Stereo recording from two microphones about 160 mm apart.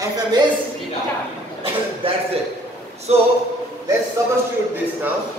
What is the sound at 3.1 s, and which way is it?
Speech, 40° right (ahead or behind).